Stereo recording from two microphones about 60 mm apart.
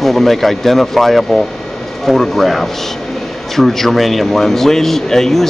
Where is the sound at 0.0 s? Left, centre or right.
Centre.